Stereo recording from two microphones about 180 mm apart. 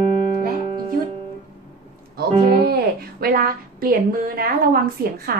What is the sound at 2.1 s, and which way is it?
A woman's voice, 60° right (ahead or behind).